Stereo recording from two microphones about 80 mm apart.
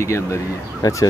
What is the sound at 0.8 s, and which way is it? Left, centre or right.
Speech, left.